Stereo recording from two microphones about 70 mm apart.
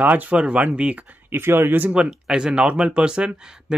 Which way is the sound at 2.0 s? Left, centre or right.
Centre.